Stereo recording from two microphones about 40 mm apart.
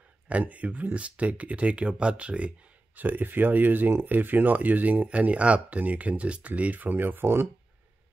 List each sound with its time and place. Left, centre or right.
0.3 s speech: right
3.0 s speech: right
6.9 s speech: right